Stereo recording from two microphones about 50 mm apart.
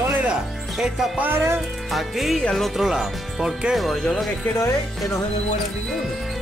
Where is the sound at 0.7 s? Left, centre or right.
Centre.